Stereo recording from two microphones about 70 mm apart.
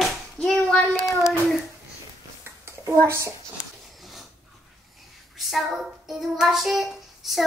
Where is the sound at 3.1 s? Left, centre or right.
Right.